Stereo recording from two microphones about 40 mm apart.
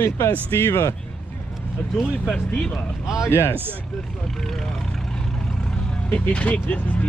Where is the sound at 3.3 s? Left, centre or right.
Left.